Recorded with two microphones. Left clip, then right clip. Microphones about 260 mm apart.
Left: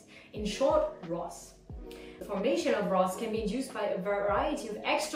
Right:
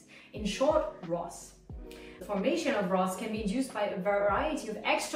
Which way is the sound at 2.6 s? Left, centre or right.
Centre.